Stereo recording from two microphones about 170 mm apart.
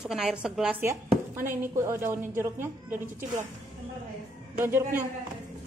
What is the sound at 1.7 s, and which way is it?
A woman's voice, 15° right (ahead or behind).